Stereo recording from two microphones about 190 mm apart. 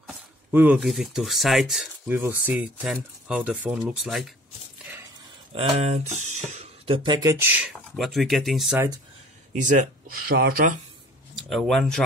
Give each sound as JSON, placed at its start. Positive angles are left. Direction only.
{"t": 0.0, "sound": "speech", "side_deg": -10}
{"t": 5.5, "sound": "speech", "side_deg": -35}
{"t": 9.5, "sound": "speech", "side_deg": -40}
{"t": 11.4, "sound": "speech", "side_deg": 0}